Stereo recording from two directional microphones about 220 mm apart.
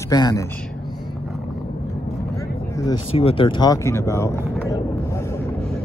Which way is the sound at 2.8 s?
20° left (ahead or behind).